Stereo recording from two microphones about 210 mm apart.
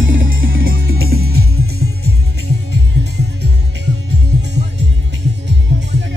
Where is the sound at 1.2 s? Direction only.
90° right.